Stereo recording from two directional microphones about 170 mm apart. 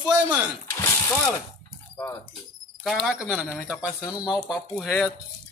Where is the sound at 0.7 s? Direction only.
20° left (ahead or behind).